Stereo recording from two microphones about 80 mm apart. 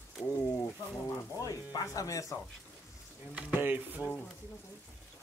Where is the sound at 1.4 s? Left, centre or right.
Left.